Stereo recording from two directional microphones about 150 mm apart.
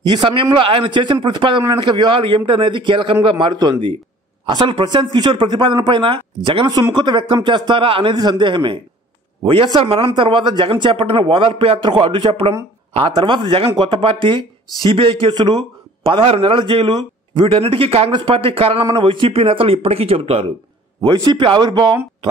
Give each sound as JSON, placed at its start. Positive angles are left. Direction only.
{"t": 0.0, "sound": "speech", "side_deg": -30}
{"t": 21.0, "sound": "speech", "side_deg": -30}